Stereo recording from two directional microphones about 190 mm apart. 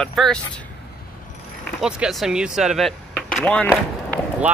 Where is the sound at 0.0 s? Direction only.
Centre (ahead or behind).